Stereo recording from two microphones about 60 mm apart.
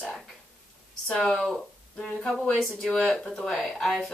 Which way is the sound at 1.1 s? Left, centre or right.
Centre.